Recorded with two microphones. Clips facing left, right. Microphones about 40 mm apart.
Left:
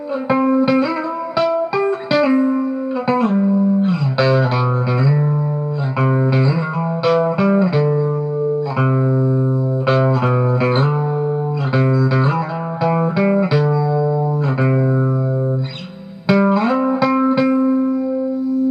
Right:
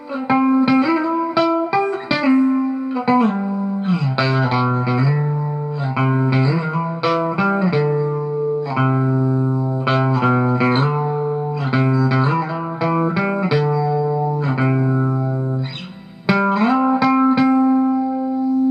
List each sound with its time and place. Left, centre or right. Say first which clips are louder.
0.3 s music: even; centre
7.1 s music: left 3 dB; centre
9.8 s music: left 1 dB; centre
16.3 s music: left 1 dB; centre